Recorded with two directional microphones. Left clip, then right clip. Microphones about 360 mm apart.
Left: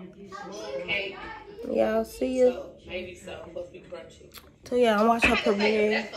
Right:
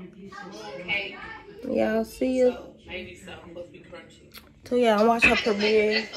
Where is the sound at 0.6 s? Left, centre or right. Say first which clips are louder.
Even; centre.